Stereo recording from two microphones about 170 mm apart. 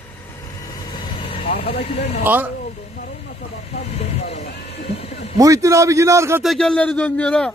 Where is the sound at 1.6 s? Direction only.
35° left (ahead or behind).